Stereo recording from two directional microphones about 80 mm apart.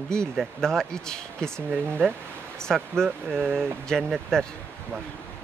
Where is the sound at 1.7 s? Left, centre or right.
Right.